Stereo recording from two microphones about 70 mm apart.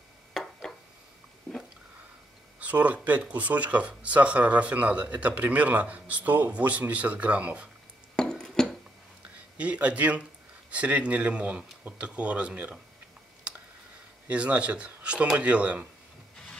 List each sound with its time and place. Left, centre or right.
0.3 s a sound: centre
2.6 s speech: right
8.2 s music: centre
9.6 s speech: centre
13.5 s a sound: centre
14.3 s speech: centre